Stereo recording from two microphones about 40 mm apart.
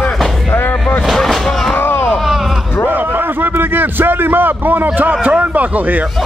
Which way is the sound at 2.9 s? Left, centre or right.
Right.